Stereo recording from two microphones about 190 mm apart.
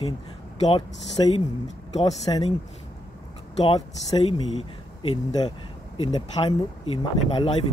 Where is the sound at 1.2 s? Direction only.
25° left (ahead or behind).